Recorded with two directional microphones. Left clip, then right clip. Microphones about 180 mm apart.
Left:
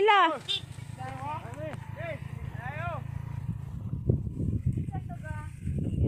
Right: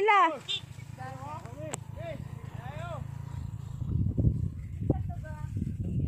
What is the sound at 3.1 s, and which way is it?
Vehicle, 10° right (ahead or behind).